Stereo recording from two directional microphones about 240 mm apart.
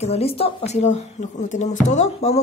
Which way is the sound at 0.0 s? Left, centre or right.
Left.